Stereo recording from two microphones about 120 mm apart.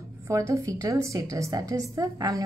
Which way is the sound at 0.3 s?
25° right (ahead or behind).